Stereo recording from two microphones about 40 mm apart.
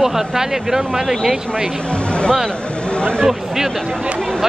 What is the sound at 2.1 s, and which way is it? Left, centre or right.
Speech, left.